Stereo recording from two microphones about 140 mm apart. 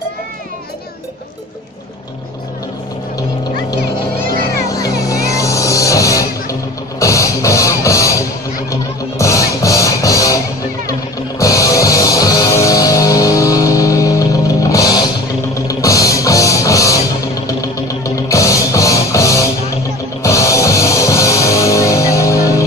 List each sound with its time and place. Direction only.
5.3 s music: 25° left (ahead or behind)